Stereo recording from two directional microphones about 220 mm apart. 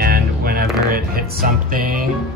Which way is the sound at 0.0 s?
45° right (ahead or behind).